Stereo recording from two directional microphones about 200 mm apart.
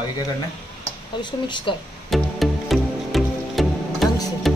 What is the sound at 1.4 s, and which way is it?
Speech, 25° left (ahead or behind).